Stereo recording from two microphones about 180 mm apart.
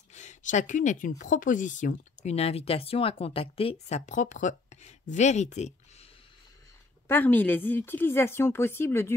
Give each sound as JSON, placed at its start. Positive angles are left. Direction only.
{"t": 0.1, "sound": "speech", "side_deg": 40}
{"t": 7.1, "sound": "a woman's voice", "side_deg": 10}